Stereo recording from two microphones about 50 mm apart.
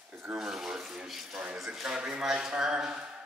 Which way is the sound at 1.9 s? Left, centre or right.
Right.